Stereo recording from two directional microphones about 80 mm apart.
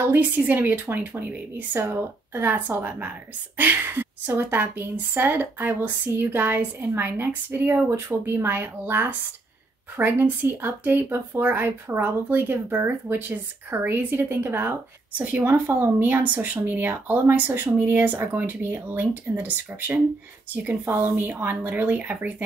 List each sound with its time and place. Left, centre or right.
0.0 s speech: right